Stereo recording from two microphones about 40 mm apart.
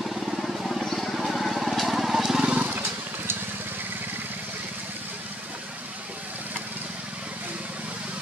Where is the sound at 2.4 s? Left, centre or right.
Right.